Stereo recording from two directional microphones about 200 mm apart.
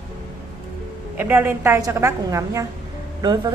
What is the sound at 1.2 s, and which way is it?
A woman's voice, 10° right (ahead or behind).